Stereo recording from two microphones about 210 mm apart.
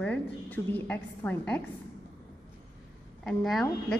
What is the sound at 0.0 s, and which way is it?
A woman's voice, 10° left (ahead or behind).